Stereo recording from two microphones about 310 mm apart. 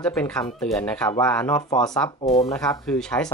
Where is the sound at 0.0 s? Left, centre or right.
Centre.